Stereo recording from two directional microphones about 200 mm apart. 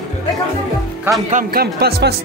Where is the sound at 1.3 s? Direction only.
45° right (ahead or behind).